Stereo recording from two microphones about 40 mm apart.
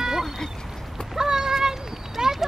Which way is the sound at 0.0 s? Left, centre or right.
Centre.